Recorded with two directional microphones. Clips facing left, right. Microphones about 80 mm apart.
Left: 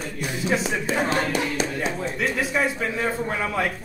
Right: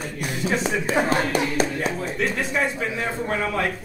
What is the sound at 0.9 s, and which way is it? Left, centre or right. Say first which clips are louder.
Speech: right 2 dB; right.